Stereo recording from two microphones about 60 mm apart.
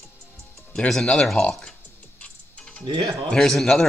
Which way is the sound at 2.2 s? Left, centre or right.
Left.